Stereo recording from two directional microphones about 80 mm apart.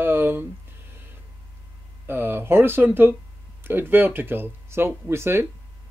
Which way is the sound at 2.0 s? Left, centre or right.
Right.